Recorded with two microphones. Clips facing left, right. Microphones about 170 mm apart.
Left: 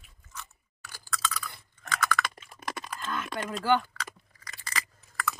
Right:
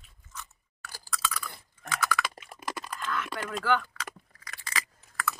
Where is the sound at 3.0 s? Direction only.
30° left (ahead or behind).